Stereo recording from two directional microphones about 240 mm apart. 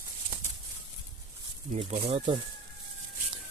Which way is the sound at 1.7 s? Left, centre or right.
Right.